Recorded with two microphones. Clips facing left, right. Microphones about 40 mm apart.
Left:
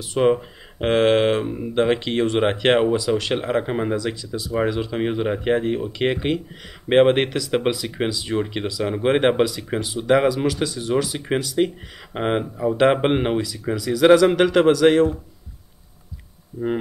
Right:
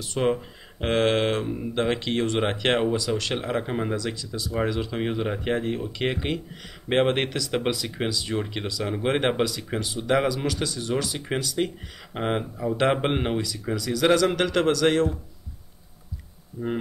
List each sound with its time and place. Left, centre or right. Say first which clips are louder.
0.0 s speech: left 6 dB; centre
16.6 s speech: left 5 dB; left